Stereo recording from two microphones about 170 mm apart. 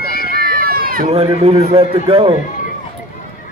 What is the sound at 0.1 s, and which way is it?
Run, 60° right (ahead or behind).